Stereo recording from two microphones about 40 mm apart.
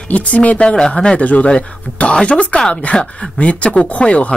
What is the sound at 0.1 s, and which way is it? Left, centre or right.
Speech, left.